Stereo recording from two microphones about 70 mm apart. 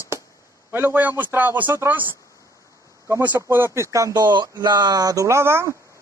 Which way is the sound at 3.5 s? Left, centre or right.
Right.